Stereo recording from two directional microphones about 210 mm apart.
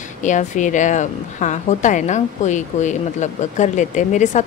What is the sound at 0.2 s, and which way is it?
A woman's voice, 35° left (ahead or behind).